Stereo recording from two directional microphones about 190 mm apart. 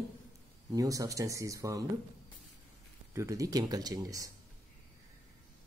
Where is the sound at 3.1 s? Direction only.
15° right (ahead or behind).